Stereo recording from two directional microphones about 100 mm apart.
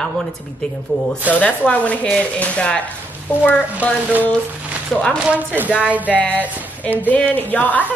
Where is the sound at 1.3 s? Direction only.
15° left (ahead or behind).